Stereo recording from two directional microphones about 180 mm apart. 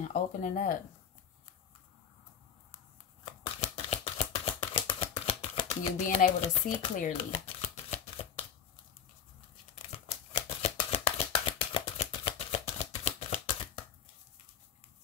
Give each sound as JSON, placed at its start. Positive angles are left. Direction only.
{"t": 0.1, "sound": "speech", "side_deg": 45}
{"t": 3.6, "sound": "shuffling cards", "side_deg": 35}
{"t": 6.0, "sound": "shuffling cards", "side_deg": 40}
{"t": 9.8, "sound": "shuffling cards", "side_deg": 35}